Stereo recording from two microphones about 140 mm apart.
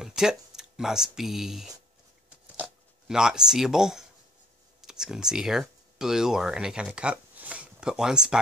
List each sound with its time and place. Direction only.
0.0 s speech: 5° right (ahead or behind)